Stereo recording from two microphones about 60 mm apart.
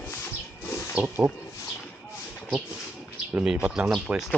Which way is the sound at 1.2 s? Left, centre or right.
Centre.